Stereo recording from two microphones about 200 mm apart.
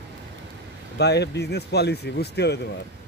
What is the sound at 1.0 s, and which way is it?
Speech, 55° left (ahead or behind).